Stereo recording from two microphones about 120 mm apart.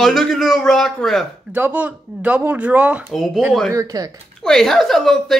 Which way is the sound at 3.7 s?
30° right (ahead or behind).